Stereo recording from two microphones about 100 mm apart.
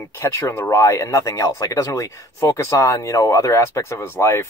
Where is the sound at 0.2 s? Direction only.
30° left (ahead or behind).